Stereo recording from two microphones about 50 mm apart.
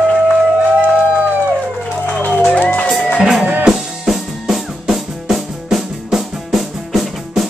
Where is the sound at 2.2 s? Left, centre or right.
Left.